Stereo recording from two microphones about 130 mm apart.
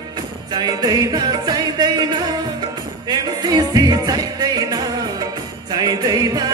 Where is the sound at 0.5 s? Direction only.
30° right (ahead or behind).